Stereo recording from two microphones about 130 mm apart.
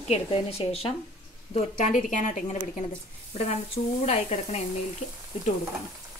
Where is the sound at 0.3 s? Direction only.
50° left (ahead or behind).